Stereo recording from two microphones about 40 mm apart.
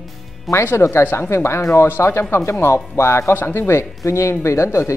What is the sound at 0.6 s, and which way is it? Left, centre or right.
Speech, left.